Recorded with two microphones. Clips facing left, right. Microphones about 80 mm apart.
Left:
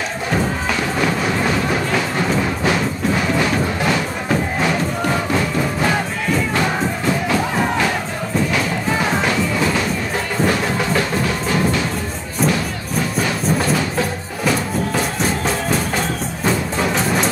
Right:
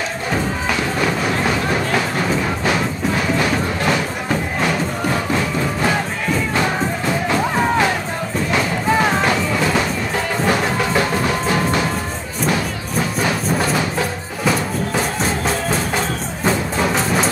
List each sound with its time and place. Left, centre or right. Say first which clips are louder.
16.4 s music: right 1 dB; centre